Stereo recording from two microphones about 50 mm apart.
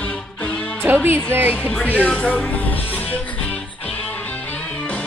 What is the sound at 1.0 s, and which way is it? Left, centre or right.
Speech, right.